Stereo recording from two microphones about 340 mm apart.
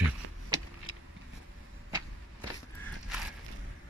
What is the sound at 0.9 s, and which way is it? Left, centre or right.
Vehicle, left.